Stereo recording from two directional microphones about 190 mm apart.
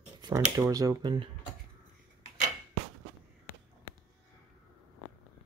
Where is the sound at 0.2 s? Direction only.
20° right (ahead or behind).